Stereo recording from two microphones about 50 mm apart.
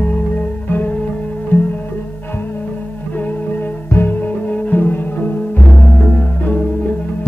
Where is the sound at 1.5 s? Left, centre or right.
Left.